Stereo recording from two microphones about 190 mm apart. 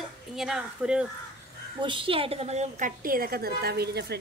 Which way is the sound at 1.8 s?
25° right (ahead or behind).